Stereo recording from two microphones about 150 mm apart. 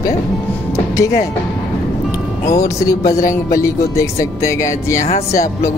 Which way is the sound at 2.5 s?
20° left (ahead or behind).